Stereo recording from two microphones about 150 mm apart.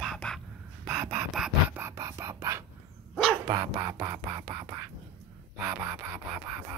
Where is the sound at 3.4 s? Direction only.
25° right (ahead or behind).